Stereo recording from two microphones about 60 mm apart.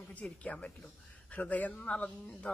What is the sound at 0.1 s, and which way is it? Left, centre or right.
A woman's voice, left.